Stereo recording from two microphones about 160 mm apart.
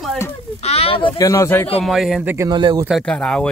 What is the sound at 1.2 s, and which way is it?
Speech, 20° left (ahead or behind).